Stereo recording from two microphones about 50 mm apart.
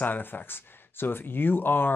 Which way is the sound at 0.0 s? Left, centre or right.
Left.